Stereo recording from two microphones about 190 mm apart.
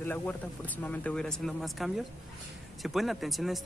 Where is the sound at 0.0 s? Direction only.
10° left (ahead or behind).